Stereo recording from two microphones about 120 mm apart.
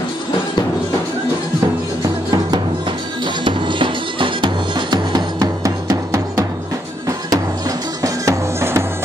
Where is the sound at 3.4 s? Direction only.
45° right (ahead or behind); by 6.4 s 25° right (ahead or behind).